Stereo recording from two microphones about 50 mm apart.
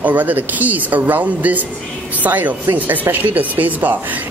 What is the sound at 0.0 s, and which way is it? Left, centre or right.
Speech, right.